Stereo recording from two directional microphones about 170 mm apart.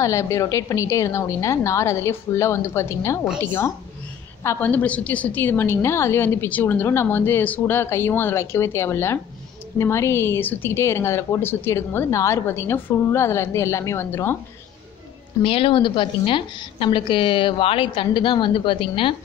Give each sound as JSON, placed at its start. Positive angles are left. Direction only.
{"t": 0.0, "sound": "a woman's voice", "side_deg": 15}
{"t": 4.4, "sound": "a woman's voice", "side_deg": 15}
{"t": 15.4, "sound": "a woman's voice", "side_deg": 30}